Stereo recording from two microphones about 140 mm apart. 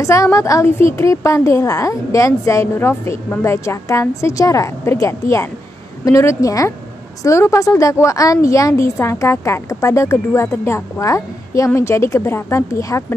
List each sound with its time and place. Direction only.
0.0 s a woman's voice: 20° left (ahead or behind)